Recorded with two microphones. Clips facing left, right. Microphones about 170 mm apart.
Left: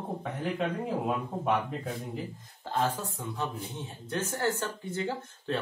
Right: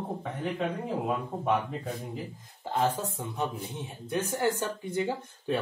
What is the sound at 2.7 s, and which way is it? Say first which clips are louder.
Speech: right 2 dB; 15° right (ahead or behind).